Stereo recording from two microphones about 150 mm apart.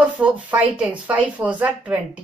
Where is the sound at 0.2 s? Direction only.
10° right (ahead or behind).